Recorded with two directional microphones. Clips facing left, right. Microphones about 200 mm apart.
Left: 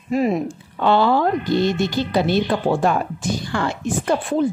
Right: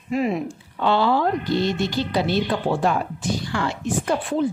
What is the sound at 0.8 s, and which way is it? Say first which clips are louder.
A woman's voice: left 3 dB; 50° left (ahead or behind).